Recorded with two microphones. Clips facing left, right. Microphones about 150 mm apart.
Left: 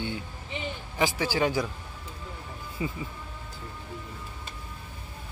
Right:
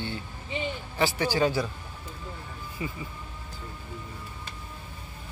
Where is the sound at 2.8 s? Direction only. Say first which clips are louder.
Left 3 dB; 20° left (ahead or behind).